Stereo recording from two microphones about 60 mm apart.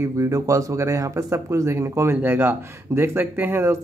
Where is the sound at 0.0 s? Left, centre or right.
Right.